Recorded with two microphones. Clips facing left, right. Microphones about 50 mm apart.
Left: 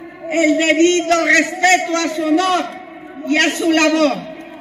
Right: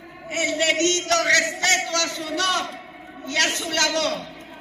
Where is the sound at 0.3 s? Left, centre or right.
Left.